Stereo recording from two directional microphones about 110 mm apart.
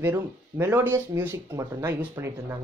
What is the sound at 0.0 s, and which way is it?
Speech, 25° right (ahead or behind).